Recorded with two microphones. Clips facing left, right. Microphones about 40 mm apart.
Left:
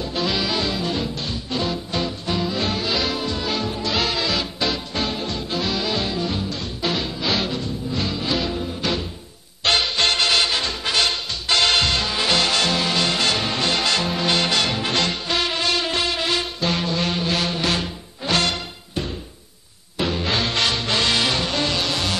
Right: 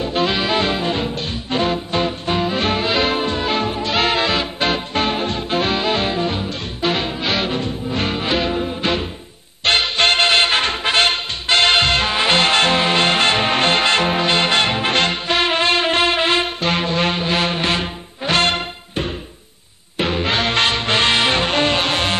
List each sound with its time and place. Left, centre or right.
0.0 s music: right